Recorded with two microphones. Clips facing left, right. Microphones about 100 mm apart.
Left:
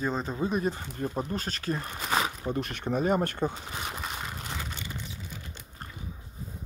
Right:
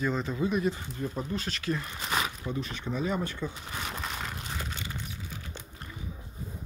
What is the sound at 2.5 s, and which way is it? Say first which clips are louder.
Speech: left 4 dB; 60° left (ahead or behind).